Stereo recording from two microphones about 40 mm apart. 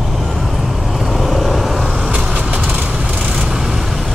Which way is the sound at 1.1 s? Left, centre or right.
Centre.